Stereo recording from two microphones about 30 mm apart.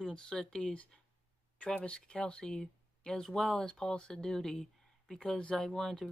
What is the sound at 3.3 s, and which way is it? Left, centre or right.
Speech, centre.